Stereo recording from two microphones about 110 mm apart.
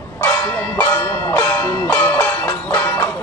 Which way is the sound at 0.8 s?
25° left (ahead or behind).